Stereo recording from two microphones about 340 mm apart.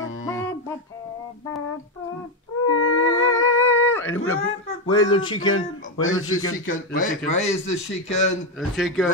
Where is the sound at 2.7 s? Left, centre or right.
Left.